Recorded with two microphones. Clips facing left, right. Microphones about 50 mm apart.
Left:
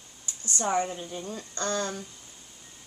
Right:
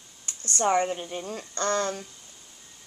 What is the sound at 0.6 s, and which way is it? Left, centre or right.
Speech, right.